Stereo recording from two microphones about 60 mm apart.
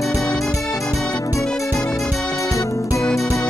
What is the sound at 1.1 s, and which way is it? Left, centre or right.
Music, left.